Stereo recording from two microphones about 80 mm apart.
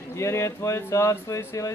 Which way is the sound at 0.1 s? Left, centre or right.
Left.